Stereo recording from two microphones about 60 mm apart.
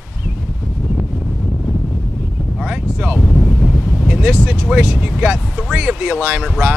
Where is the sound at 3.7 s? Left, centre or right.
Centre.